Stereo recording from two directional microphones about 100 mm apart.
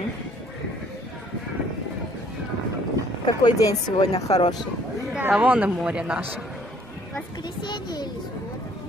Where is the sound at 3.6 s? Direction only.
40° left (ahead or behind).